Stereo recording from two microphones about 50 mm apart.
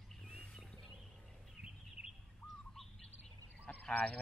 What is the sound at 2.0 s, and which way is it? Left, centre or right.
Bird, right.